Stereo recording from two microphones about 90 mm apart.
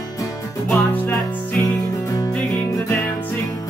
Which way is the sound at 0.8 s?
20° left (ahead or behind).